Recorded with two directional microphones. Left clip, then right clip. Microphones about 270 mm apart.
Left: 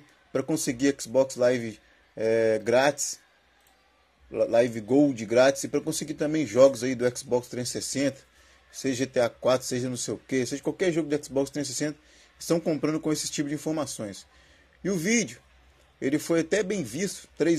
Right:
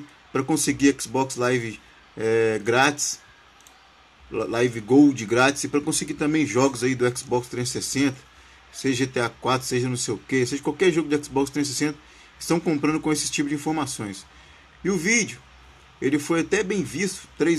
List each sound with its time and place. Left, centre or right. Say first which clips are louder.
0.3 s speech: right 4 dB; centre
4.4 s speech: left 1 dB; centre